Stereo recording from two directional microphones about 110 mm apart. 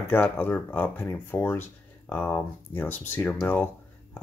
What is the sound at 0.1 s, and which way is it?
Speech, 15° left (ahead or behind).